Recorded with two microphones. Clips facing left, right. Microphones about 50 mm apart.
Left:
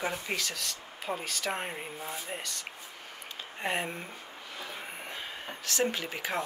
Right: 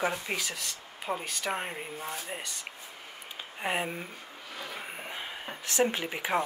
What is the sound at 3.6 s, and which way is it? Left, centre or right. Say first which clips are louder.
Speech: right 1 dB; centre.